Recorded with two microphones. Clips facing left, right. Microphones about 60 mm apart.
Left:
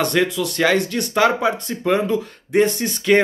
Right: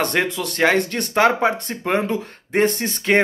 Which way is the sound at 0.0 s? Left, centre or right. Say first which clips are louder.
Left 2 dB; right.